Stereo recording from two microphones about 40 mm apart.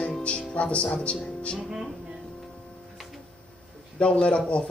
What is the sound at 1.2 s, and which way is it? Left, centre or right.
Speech, left.